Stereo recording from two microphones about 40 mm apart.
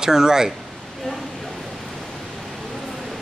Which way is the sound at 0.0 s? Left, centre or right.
Centre.